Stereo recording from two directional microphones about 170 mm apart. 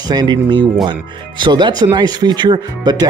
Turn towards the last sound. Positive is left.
turn(degrees=-25)  # may be behind; listen again after turning